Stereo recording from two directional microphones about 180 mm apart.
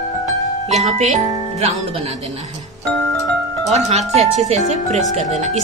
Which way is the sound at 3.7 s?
35° right (ahead or behind).